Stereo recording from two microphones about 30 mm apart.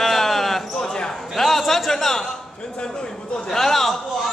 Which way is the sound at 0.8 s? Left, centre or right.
Left.